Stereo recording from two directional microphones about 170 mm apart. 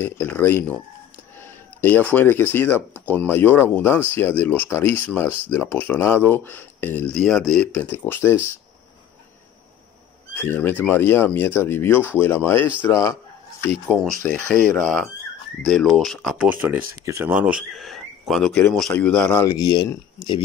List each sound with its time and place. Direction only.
0.0 s speech: 10° left (ahead or behind)
1.8 s speech: 10° left (ahead or behind)
10.3 s speech: 10° left (ahead or behind)
14.5 s speech: 5° left (ahead or behind)
19.4 s speech: 20° left (ahead or behind)